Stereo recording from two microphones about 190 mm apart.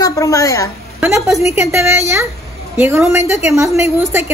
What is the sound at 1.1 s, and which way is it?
A woman's voice, 15° right (ahead or behind).